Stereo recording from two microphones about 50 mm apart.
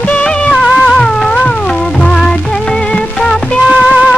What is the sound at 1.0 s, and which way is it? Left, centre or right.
Music, centre.